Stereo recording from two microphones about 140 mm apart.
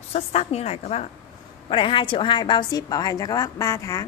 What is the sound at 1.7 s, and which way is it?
A woman's voice, 35° left (ahead or behind).